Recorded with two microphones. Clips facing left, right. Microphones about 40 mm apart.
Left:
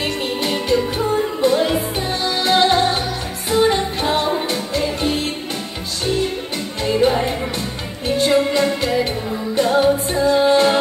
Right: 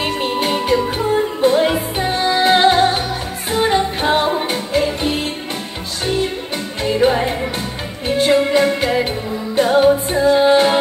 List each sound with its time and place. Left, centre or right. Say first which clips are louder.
0.0 s music: right 3 dB; right
6.8 s music: right 1 dB; centre
8.2 s music: right 3 dB; right